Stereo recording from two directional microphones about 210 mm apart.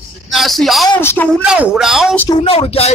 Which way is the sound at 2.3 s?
30° left (ahead or behind).